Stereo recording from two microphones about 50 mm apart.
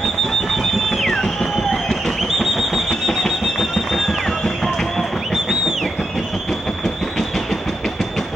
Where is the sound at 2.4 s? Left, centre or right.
Centre.